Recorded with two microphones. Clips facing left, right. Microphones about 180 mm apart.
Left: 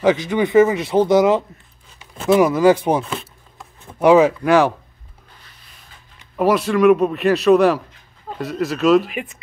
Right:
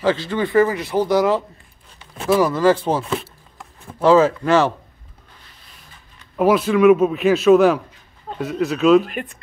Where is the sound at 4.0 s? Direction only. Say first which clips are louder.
Left 1 dB; 15° left (ahead or behind).